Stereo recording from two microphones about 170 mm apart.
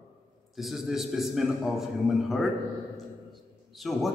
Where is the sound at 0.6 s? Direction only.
Centre (ahead or behind).